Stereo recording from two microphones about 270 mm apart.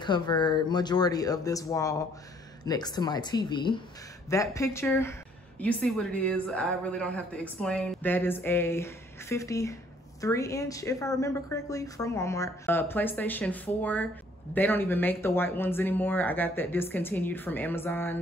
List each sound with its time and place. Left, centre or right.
0.0 s a woman's voice: centre